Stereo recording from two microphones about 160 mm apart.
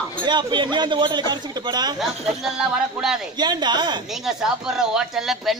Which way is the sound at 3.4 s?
25° right (ahead or behind).